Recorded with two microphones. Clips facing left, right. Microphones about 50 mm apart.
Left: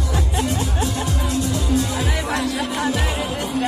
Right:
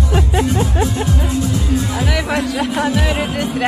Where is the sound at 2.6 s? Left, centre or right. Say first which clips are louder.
Right 5 dB; right.